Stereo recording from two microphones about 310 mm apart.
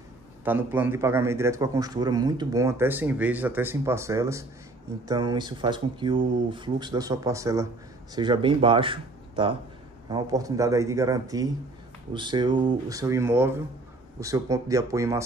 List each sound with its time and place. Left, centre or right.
0.5 s a man's voice: centre